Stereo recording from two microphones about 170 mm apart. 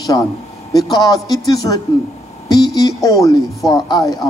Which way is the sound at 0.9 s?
20° left (ahead or behind).